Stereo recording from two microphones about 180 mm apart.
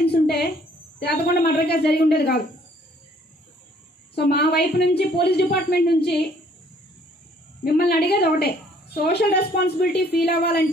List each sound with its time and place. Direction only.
0.0 s a sound: 65° left (ahead or behind)
0.9 s a woman's voice: 60° left (ahead or behind)
4.1 s a woman's voice: 65° left (ahead or behind)
7.6 s a woman's voice: 65° left (ahead or behind)